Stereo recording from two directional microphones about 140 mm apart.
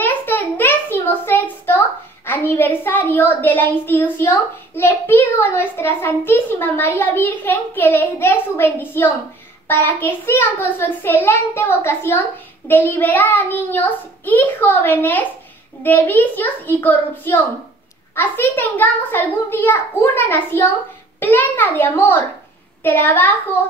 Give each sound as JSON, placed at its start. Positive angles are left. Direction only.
{"t": 0.0, "sound": "a child's voice", "side_deg": 15}